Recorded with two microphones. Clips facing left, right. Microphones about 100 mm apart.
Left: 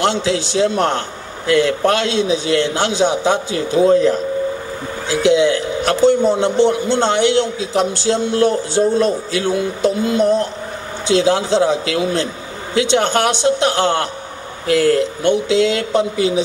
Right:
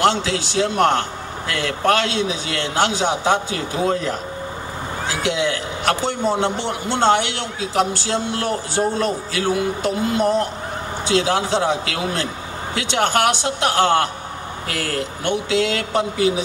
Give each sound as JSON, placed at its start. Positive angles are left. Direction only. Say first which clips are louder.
{"t": 0.0, "sound": "a man's voice", "louder": "left 1 dB", "side_deg": 20}